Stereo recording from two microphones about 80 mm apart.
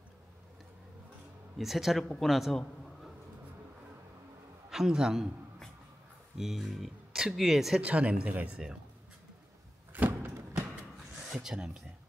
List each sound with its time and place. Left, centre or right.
1.6 s a man's voice: centre
4.6 s a man's voice: centre
6.3 s speech: centre
7.8 s speech: centre
9.9 s a sound: right
11.2 s speech: centre